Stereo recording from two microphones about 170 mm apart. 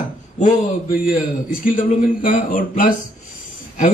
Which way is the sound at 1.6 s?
50° left (ahead or behind).